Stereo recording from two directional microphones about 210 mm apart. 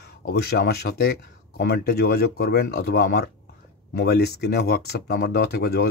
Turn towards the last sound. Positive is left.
turn(degrees=45)  # may be behind; listen again after turning